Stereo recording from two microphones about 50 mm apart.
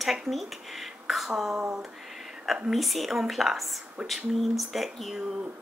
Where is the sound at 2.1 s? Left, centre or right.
Centre.